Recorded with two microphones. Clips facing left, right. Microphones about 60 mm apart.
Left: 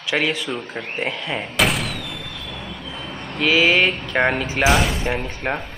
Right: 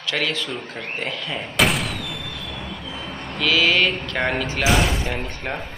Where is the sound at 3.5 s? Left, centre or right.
Centre.